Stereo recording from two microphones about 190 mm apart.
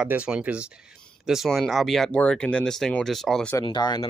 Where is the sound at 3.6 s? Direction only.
20° left (ahead or behind).